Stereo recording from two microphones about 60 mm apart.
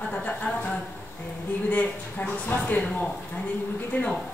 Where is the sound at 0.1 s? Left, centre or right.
Left.